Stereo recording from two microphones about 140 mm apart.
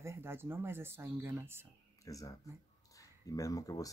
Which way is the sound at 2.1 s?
25° left (ahead or behind).